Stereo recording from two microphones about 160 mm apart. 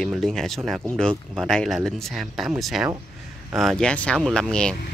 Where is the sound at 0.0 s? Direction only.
Centre (ahead or behind).